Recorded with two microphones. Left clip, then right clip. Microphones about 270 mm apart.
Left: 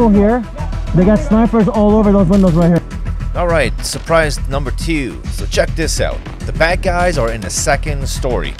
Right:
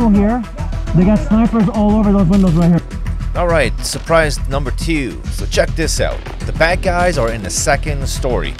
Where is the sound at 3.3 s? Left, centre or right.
Centre.